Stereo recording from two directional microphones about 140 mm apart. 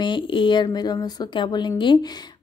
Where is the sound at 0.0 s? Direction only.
35° left (ahead or behind).